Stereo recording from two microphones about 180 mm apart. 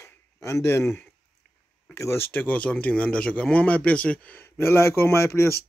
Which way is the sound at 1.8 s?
15° left (ahead or behind).